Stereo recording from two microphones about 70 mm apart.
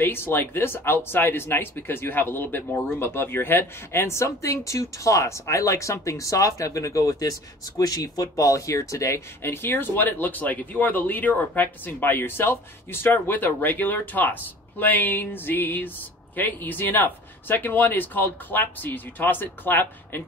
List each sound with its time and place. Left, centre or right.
0.0 s speech: left
9.4 s speech: left